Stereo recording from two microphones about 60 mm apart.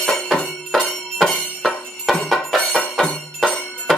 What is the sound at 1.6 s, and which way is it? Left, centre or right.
Music, centre.